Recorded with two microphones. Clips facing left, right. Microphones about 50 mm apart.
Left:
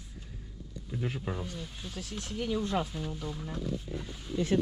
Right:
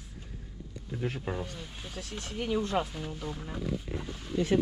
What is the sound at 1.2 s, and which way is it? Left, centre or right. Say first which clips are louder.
Speech: right 2 dB; centre.